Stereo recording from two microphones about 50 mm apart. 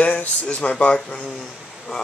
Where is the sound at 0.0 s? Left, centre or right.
Left.